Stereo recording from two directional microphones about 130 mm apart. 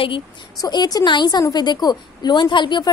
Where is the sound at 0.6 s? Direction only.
30° left (ahead or behind).